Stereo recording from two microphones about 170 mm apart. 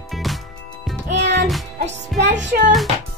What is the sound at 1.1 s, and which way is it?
Music, 90° right.